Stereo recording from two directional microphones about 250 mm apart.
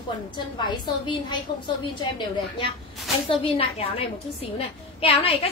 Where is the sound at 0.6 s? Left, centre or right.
Centre.